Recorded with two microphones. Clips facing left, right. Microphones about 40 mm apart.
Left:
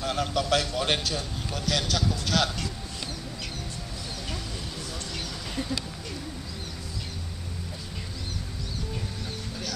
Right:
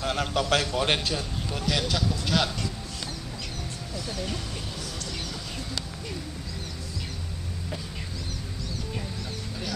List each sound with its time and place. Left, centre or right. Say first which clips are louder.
0.0 s a man's voice: right 1 dB; right
1.1 s speech: right 1 dB; centre